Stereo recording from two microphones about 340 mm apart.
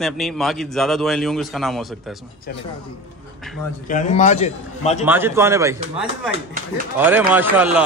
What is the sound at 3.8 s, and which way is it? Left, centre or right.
A man's voice, left.